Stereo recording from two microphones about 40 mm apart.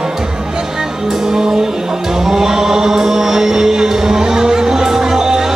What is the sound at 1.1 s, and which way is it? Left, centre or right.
Music, centre.